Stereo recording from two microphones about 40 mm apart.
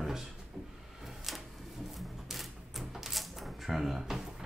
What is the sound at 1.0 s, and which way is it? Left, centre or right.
Typewriter, centre.